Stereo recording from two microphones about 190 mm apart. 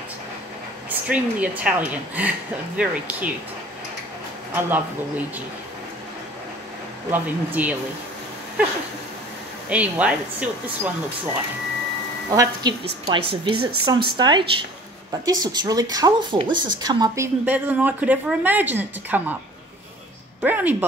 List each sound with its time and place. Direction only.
0.8 s a woman's voice: 5° right (ahead or behind)
4.6 s a woman's voice: 10° right (ahead or behind)
7.1 s a woman's voice: 10° right (ahead or behind)
9.7 s a woman's voice: 5° right (ahead or behind)
12.3 s a woman's voice: 20° right (ahead or behind)
20.4 s a woman's voice: 10° right (ahead or behind)